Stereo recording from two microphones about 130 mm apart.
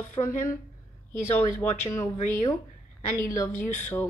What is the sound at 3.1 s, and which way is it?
Speech, 25° left (ahead or behind).